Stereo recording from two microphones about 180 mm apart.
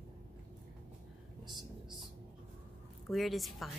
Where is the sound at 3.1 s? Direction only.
Centre (ahead or behind).